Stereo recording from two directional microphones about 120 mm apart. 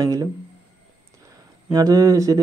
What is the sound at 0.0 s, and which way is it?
Speech, 30° right (ahead or behind).